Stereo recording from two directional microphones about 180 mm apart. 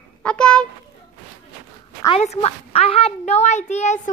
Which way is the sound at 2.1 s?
35° left (ahead or behind).